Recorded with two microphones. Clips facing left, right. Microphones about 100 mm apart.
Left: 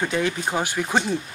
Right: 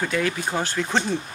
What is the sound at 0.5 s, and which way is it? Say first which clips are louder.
Speech: left 1 dB; 10° left (ahead or behind).